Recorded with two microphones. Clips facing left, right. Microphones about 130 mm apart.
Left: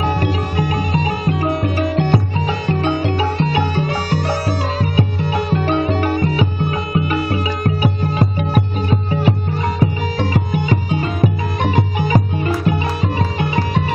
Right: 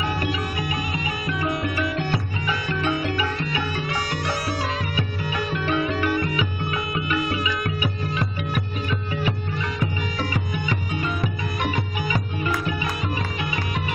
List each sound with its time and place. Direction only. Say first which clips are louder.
0.0 s music: left 7 dB; 40° left (ahead or behind)